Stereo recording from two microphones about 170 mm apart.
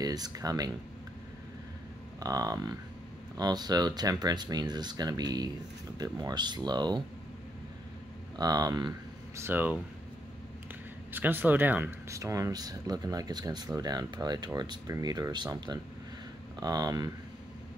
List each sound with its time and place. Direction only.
0.0 s speech: 20° right (ahead or behind)
2.1 s speech: 20° right (ahead or behind)
8.4 s speech: 20° right (ahead or behind)
9.4 s speech: 10° right (ahead or behind)
11.1 s speech: 10° right (ahead or behind)